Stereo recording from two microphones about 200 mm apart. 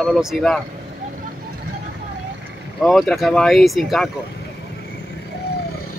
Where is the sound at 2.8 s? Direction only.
Centre (ahead or behind).